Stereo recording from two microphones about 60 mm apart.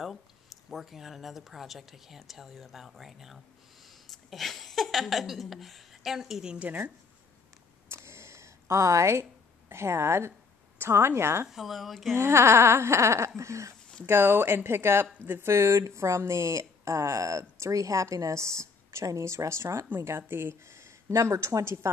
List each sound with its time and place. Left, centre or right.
0.7 s speech: centre
7.9 s a sound: right
10.8 s speech: right
11.4 s speech: centre
12.2 s speech: right
14.0 s speech: right
15.5 s speech: right